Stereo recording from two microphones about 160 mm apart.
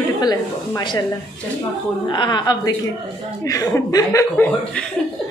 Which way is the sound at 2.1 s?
30° left (ahead or behind).